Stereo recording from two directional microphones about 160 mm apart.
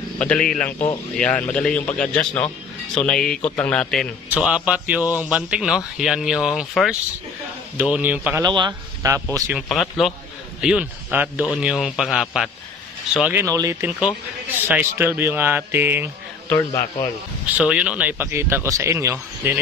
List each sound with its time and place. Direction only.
0.2 s a man's voice: 5° left (ahead or behind)
4.3 s a man's voice: 5° right (ahead or behind)
8.4 s speech: 25° right (ahead or behind)
9.5 s a man's voice: centre (ahead or behind)
16.4 s a man's voice: 20° left (ahead or behind)
17.6 s speech: 5° right (ahead or behind)